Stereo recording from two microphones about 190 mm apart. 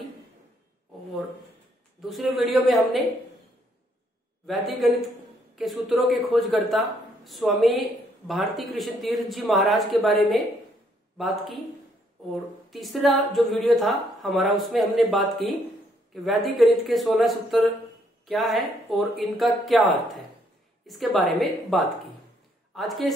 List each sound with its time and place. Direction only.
2.0 s a woman's voice: centre (ahead or behind)
4.5 s a woman's voice: centre (ahead or behind)